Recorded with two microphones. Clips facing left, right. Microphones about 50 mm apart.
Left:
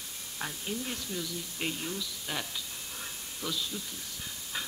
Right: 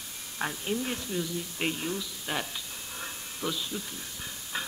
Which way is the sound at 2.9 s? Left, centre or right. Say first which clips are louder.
Right 5 dB; centre.